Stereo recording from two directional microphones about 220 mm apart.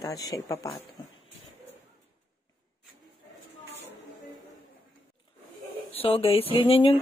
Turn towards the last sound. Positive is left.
turn(degrees=25)  # may be behind; listen again after turning